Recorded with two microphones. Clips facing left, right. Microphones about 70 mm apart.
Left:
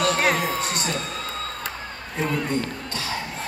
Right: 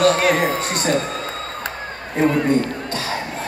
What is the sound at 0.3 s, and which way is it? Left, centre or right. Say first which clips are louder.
Speech: right 5 dB; right.